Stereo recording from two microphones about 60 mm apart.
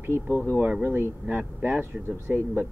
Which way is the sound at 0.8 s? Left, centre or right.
Right.